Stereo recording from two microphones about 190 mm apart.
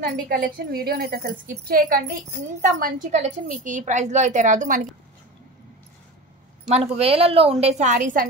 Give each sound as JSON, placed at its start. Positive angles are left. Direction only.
{"t": 0.0, "sound": "a woman's voice", "side_deg": -50}
{"t": 2.8, "sound": "a woman's voice", "side_deg": -40}
{"t": 6.7, "sound": "a woman's voice", "side_deg": -30}